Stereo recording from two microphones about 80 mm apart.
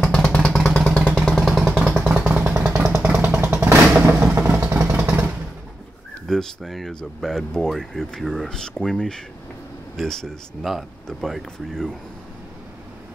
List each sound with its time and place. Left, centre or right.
0.0 s vehicle: centre
1.0 s jackhammer: centre
1.8 s vehicle: centre
3.2 s vehicle: right
6.2 s speech: centre